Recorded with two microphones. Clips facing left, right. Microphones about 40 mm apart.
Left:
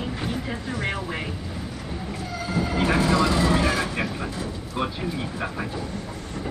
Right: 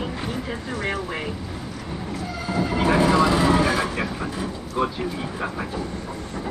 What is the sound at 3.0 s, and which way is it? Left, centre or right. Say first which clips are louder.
Vehicle: right 4 dB; centre.